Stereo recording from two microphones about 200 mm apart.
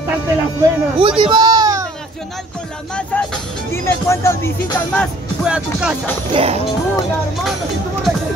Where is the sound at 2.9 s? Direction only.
5° left (ahead or behind).